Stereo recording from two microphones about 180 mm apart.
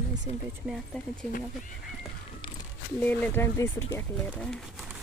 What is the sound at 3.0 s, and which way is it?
Speech, 10° left (ahead or behind).